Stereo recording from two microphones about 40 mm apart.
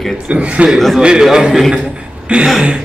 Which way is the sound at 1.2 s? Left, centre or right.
Centre.